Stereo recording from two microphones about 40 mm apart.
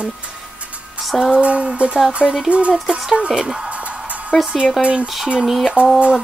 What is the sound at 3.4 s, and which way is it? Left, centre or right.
Speech, centre.